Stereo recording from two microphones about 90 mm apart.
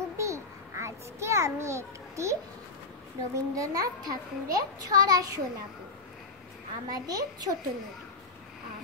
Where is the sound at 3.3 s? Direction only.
35° right (ahead or behind).